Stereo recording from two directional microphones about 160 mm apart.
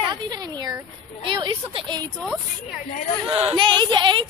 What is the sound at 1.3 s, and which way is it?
Speech, 30° right (ahead or behind).